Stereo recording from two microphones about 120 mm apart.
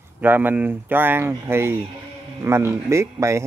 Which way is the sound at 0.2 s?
15° right (ahead or behind).